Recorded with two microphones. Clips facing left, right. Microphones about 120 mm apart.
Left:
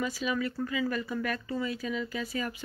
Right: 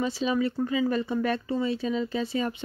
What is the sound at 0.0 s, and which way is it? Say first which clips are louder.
Speech: right 5 dB; 30° right (ahead or behind).